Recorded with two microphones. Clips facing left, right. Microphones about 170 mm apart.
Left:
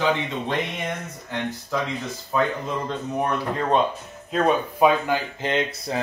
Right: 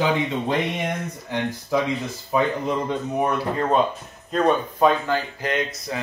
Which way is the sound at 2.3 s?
15° right (ahead or behind).